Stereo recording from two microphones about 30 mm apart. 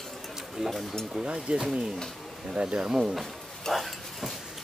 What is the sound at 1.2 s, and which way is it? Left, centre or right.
Speech, right.